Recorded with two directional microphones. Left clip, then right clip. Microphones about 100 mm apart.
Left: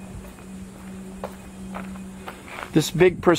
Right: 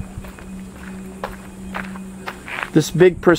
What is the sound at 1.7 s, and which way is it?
Walk, 35° right (ahead or behind).